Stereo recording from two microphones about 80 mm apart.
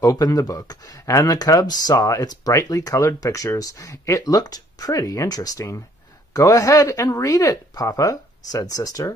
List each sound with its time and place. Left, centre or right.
0.0 s speech: left